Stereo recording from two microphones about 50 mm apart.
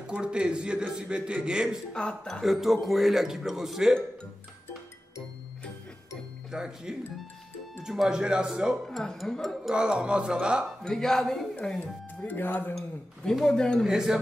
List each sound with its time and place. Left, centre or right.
0.0 s a man's voice: centre
2.0 s speech: centre
2.4 s speech: centre
6.5 s a man's voice: centre
8.2 s speech: centre
9.0 s speech: centre
9.8 s speech: centre
10.8 s speech: centre
12.3 s speech: left
12.7 s speech: centre
13.8 s a man's voice: centre